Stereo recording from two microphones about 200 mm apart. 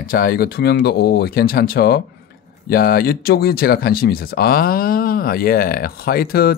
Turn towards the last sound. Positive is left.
turn(degrees=50)  # may be behind; listen again after turning